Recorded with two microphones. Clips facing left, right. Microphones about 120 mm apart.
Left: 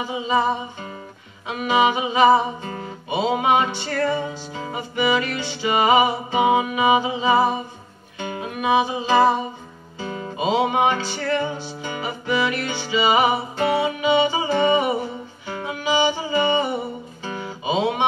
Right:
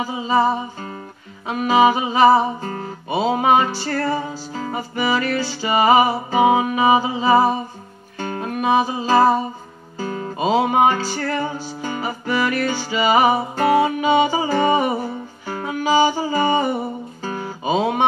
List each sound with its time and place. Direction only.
0.0 s music: 40° right (ahead or behind)